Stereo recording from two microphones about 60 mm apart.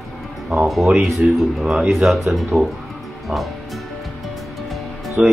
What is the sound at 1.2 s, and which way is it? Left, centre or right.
Speech, centre.